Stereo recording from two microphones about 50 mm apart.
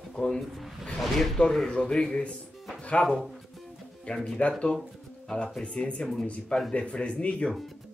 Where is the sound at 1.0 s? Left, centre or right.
Centre.